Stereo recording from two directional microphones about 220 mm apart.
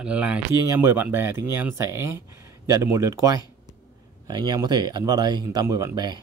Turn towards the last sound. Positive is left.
turn(degrees=-15)  # may be behind; listen again after turning